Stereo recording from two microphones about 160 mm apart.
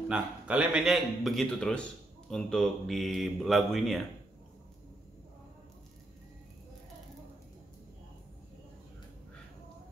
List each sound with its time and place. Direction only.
0.1 s speech: 10° right (ahead or behind)